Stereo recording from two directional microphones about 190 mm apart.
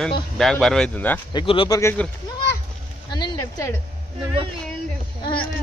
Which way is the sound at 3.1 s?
20° left (ahead or behind).